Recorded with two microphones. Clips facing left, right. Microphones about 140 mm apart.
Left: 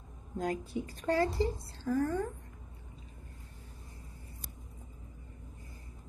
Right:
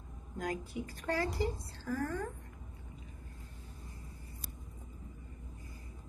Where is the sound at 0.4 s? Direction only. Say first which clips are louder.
Left 4 dB; 25° left (ahead or behind).